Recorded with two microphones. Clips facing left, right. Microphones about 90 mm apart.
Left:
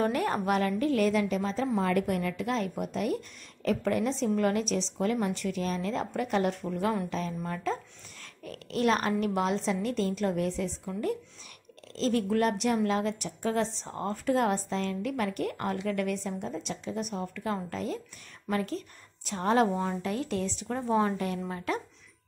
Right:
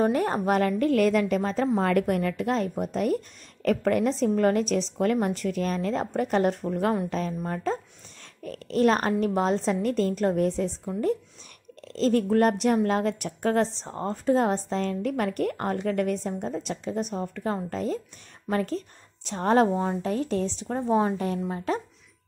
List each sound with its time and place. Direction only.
0.0 s a woman's voice: 30° right (ahead or behind)
0.6 s a woman's voice: 50° right (ahead or behind)
11.9 s speech: 45° right (ahead or behind)
13.7 s a woman's voice: 30° right (ahead or behind)